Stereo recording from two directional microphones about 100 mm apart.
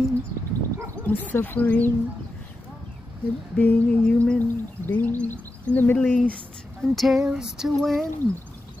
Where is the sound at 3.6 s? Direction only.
15° left (ahead or behind).